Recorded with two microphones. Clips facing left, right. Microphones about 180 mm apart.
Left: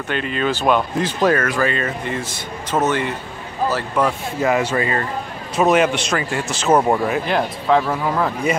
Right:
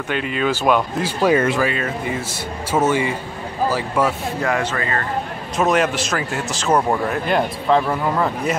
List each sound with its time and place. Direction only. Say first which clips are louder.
0.1 s speech: even; 5° right (ahead or behind)
4.4 s speech: left 4 dB; 5° left (ahead or behind)
4.7 s speech: left 3 dB; 20° left (ahead or behind)
5.6 s speech: left 2 dB; centre (ahead or behind)